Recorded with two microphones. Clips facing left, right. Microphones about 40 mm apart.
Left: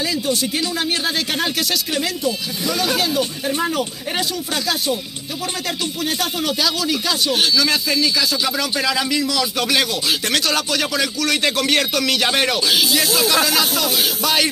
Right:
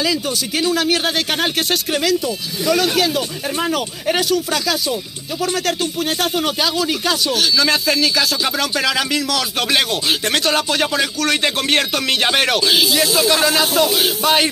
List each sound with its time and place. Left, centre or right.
1.0 s speech: right
3.0 s a man's voice: right
6.0 s speech: right
8.5 s speech: right
9.2 s a man's voice: right
9.6 s speech: right